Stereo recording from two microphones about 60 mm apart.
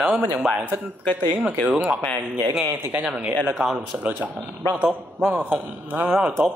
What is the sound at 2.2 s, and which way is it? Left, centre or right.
Speech, right.